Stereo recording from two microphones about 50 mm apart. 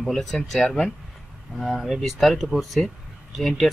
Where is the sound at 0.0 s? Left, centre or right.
Centre.